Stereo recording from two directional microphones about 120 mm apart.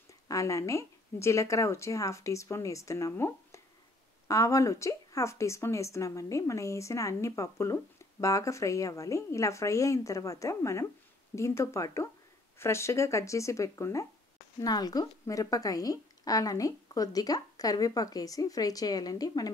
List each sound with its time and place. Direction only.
0.3 s a woman's voice: 25° left (ahead or behind)